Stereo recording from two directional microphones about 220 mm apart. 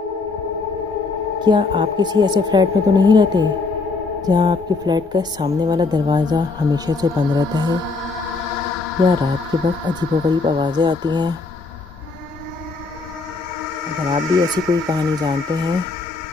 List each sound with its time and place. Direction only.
1.4 s a woman's voice: 20° right (ahead or behind)
9.0 s a woman's voice: 20° right (ahead or behind)
14.1 s a woman's voice: 20° right (ahead or behind)